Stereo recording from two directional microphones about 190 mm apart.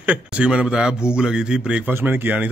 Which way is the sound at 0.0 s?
5° right (ahead or behind).